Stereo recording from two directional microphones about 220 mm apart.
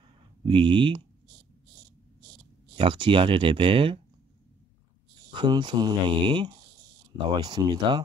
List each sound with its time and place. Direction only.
0.5 s speech: 20° right (ahead or behind)
2.8 s speech: 20° right (ahead or behind)
5.3 s speech: 20° right (ahead or behind)